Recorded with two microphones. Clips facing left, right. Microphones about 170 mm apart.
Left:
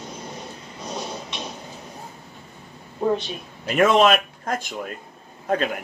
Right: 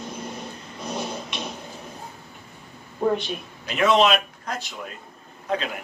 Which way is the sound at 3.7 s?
50° left (ahead or behind).